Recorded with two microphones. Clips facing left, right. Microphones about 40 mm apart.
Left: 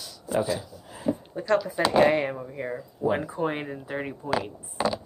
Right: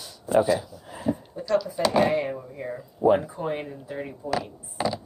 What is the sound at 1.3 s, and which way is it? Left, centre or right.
Speech, left.